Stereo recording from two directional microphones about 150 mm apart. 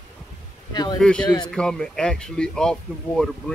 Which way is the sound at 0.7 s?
25° left (ahead or behind).